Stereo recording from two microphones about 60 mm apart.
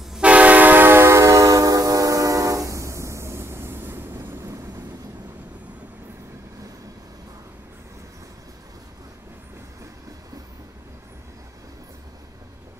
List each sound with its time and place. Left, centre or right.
0.2 s train: right